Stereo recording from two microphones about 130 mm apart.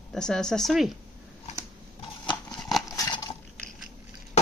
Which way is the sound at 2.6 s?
Centre (ahead or behind).